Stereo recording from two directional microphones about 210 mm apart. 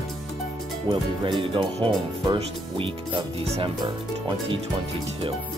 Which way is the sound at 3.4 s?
25° right (ahead or behind).